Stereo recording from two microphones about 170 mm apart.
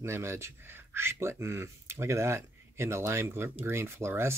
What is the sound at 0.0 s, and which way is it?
Speech, 15° right (ahead or behind).